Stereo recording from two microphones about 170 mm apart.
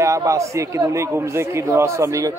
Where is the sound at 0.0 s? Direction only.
15° right (ahead or behind).